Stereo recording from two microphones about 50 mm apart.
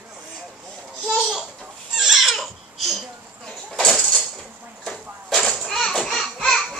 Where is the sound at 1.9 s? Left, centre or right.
Centre.